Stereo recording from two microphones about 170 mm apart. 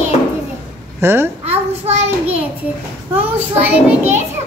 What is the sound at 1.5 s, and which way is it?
Speech, 35° right (ahead or behind).